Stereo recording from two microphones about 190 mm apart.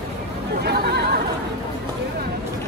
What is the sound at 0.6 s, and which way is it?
Speech, 60° right (ahead or behind).